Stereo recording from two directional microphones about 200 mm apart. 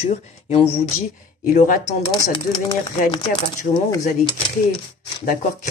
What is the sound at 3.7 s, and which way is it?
Speech, 40° left (ahead or behind).